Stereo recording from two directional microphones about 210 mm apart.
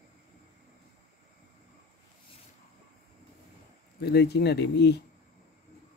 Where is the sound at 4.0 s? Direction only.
50° left (ahead or behind).